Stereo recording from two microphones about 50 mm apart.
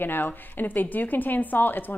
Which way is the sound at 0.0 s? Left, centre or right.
Left.